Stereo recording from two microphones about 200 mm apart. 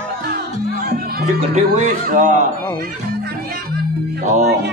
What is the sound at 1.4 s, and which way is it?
Speech, 35° right (ahead or behind).